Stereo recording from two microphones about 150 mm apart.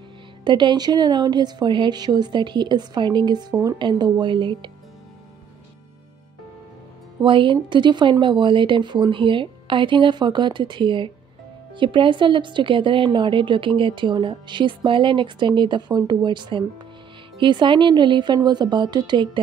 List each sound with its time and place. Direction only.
0.4 s speech: 30° right (ahead or behind)
7.2 s a woman's voice: 35° right (ahead or behind)